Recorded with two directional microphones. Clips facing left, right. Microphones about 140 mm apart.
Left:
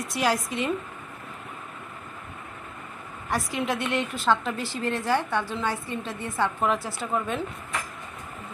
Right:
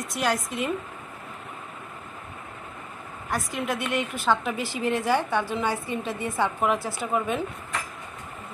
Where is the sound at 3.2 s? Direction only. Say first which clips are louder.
Left 1 dB; centre (ahead or behind).